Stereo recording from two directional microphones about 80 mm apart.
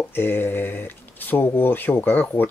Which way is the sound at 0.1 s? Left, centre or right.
Left.